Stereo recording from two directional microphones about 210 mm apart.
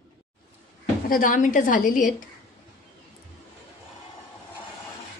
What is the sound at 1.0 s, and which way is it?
A woman's voice, 40° left (ahead or behind).